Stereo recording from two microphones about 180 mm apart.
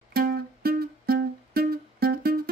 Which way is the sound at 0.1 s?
60° right (ahead or behind).